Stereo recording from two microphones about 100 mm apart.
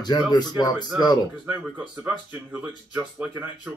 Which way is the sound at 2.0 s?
20° right (ahead or behind).